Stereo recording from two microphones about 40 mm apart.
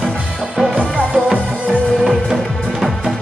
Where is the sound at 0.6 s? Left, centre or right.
Centre.